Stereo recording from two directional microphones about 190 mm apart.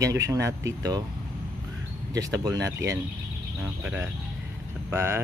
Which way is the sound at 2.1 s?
20° right (ahead or behind).